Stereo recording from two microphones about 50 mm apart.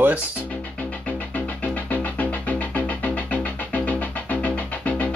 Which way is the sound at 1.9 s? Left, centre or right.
Left.